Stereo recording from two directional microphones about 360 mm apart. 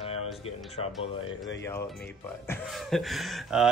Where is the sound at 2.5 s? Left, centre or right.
Centre.